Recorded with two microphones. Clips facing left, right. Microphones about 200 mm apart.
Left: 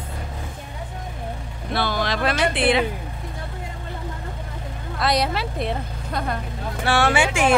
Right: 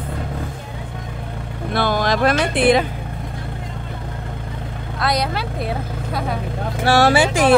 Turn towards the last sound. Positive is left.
turn(degrees=-35)  # may be behind; listen again after turning